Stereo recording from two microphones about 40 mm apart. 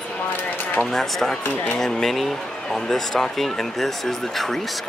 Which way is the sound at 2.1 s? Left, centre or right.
Centre.